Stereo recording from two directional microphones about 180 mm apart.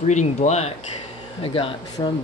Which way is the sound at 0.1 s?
40° left (ahead or behind).